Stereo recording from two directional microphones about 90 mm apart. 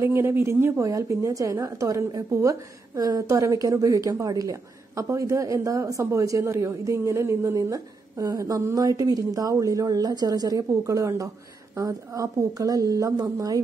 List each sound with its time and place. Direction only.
0.0 s a woman's voice: 30° right (ahead or behind)